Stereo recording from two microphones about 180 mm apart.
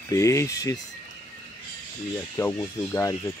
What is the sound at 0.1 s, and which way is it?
Speech, 15° left (ahead or behind).